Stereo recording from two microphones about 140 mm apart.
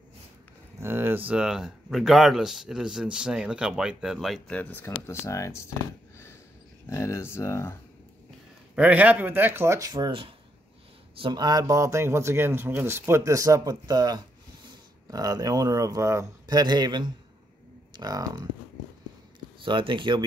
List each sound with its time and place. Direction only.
0.7 s speech: 15° right (ahead or behind); by 4.6 s centre (ahead or behind)
4.6 s speech: 15° left (ahead or behind)
6.9 s speech: 20° left (ahead or behind)
8.7 s speech: 10° right (ahead or behind); by 10.1 s 25° right (ahead or behind)
11.1 s speech: 35° right (ahead or behind)
19.6 s speech: 35° right (ahead or behind)